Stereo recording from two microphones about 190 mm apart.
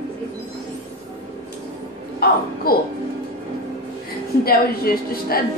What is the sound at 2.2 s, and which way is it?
Speech, 55° left (ahead or behind).